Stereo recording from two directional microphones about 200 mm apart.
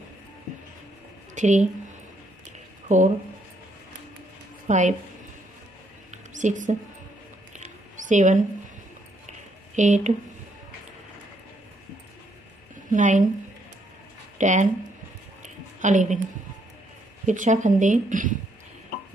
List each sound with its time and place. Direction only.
1.3 s a woman's voice: 35° right (ahead or behind)
4.6 s a woman's voice: 35° right (ahead or behind)
6.3 s speech: 40° right (ahead or behind)
7.5 s a sound: 40° right (ahead or behind)
9.8 s speech: 35° right (ahead or behind)
12.9 s speech: 40° right (ahead or behind)
14.4 s speech: 40° right (ahead or behind)
15.4 s a sound: 40° right (ahead or behind)
17.3 s speech: 40° right (ahead or behind)